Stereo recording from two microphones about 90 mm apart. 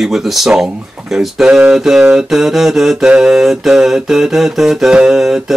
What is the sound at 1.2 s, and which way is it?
Mantra, centre (ahead or behind).